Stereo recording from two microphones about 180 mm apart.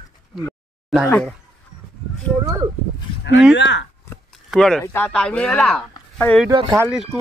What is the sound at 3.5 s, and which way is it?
Speech, 80° left.